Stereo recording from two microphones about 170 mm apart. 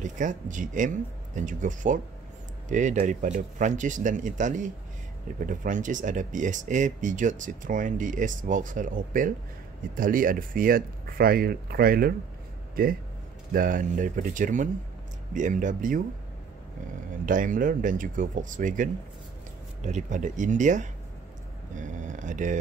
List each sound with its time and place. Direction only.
0.0 s speech: 50° right (ahead or behind)
13.5 s speech: 55° right (ahead or behind)
17.3 s speech: 50° right (ahead or behind)